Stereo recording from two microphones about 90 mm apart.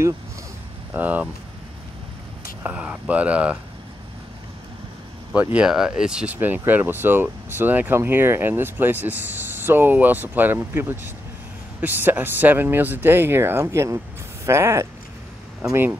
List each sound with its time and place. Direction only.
0.9 s speech: 20° right (ahead or behind)
2.6 s speech: 20° right (ahead or behind)
5.3 s speech: 15° right (ahead or behind)
6.3 s speech: 20° right (ahead or behind)